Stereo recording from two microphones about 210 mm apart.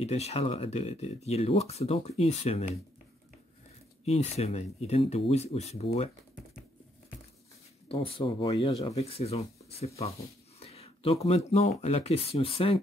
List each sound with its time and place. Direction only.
0.0 s speech: 30° left (ahead or behind)
4.0 s speech: 30° left (ahead or behind)
7.9 s speech: 25° left (ahead or behind)